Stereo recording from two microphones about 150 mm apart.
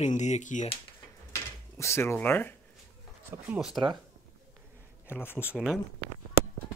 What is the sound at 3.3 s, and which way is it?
Speech, 15° right (ahead or behind).